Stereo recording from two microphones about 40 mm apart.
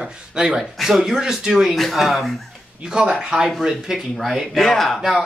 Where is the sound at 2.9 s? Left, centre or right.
Right.